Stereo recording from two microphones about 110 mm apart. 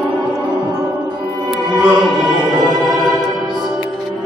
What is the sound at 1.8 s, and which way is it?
Music, centre (ahead or behind).